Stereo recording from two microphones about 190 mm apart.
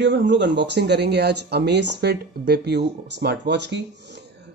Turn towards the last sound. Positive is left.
turn(degrees=-65)  # may be behind; listen again after turning